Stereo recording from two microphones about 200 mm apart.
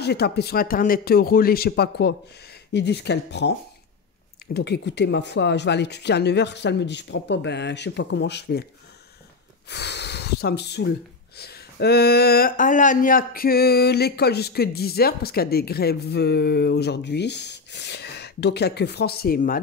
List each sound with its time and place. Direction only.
0.0 s speech: 55° left (ahead or behind)
4.6 s speech: 55° left (ahead or behind)
9.7 s speech: 55° left (ahead or behind)